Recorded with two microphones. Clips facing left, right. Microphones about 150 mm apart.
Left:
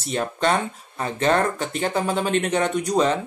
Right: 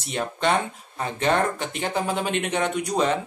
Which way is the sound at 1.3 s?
40° left (ahead or behind).